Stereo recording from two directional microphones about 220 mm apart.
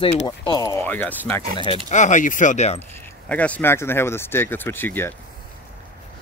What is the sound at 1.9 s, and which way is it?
Speech, 35° left (ahead or behind).